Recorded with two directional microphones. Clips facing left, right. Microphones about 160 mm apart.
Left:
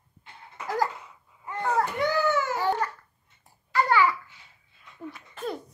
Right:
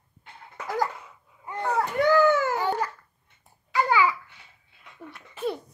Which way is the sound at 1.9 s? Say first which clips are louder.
Right 5 dB; 50° right (ahead or behind).